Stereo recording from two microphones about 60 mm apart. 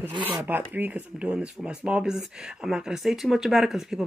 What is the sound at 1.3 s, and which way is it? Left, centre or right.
Speech, centre.